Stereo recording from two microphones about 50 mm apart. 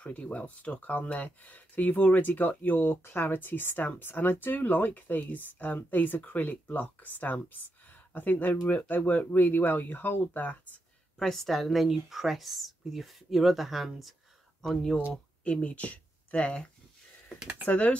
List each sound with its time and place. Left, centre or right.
0.0 s speech: left
11.1 s speech: centre
15.4 s speech: left